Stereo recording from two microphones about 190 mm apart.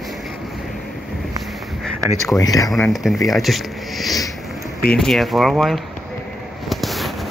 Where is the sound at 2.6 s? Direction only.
Centre (ahead or behind).